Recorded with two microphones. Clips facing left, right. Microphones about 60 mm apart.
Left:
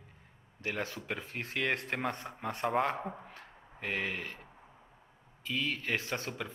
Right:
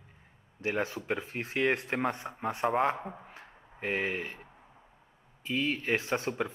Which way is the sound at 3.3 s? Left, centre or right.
Right.